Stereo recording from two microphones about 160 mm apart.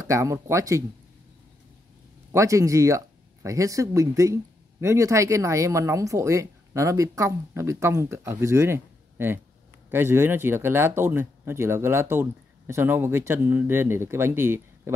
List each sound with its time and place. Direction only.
0.1 s speech: 20° right (ahead or behind)
2.3 s speech: 20° right (ahead or behind)